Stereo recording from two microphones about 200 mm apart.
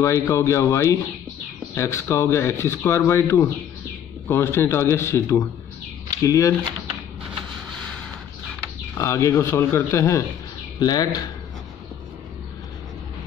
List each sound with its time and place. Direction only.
0.0 s speech: 15° left (ahead or behind)
8.9 s speech: 15° left (ahead or behind)